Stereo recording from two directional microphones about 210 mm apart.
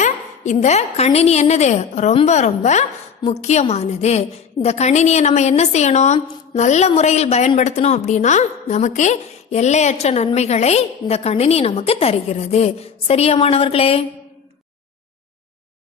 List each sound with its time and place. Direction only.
0.5 s a woman's voice: 30° left (ahead or behind)